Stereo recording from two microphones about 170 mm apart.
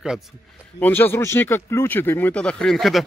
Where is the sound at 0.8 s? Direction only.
10° left (ahead or behind).